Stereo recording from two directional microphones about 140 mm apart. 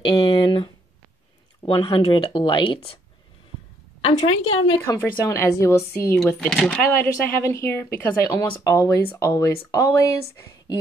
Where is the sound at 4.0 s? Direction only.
40° left (ahead or behind).